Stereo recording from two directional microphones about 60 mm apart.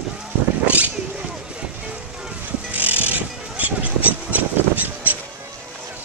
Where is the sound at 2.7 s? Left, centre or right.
Right.